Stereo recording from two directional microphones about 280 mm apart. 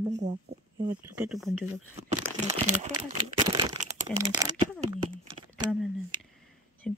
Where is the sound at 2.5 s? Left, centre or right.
Centre.